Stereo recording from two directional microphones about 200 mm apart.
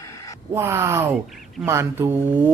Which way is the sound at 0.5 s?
15° right (ahead or behind).